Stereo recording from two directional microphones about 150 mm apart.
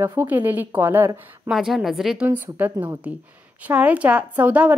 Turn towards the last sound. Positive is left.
turn(degrees=-10)  # may be behind; listen again after turning